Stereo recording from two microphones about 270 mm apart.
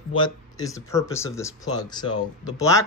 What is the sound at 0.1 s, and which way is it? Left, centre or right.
Speech, centre.